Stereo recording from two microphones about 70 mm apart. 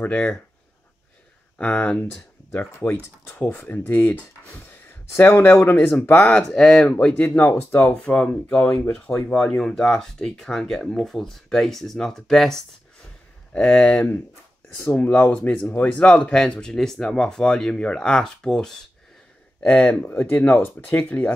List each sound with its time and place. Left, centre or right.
0.1 s speech: centre
1.6 s speech: centre
2.5 s speech: left
5.1 s speech: left
8.0 s speech: centre
13.5 s speech: centre
19.6 s speech: left